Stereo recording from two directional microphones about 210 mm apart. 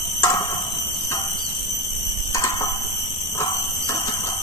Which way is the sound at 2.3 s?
15° left (ahead or behind).